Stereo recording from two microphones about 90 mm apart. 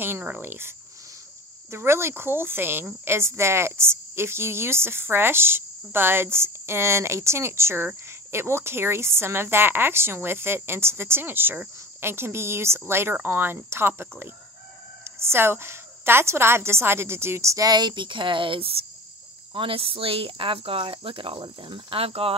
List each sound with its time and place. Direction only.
0.0 s speech: 20° right (ahead or behind); by 22.3 s 90° right